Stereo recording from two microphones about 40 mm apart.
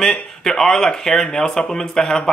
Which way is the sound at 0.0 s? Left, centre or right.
Centre.